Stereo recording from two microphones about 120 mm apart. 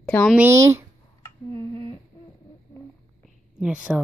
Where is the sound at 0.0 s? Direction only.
10° left (ahead or behind).